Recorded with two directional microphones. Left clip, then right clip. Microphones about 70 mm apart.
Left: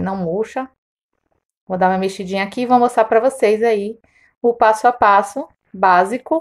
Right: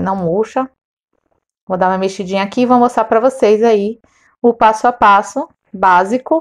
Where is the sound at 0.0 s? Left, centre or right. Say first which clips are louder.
Right 5 dB; right.